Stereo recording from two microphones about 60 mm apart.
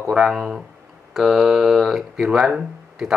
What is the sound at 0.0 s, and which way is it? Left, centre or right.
Speech, centre.